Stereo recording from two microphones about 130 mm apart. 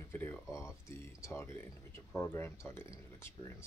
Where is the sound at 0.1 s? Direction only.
15° left (ahead or behind).